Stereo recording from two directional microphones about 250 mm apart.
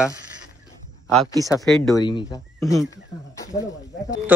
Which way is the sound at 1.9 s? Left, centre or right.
Centre.